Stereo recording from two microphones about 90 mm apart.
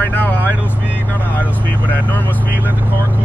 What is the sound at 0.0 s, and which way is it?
Vehicle, 20° left (ahead or behind).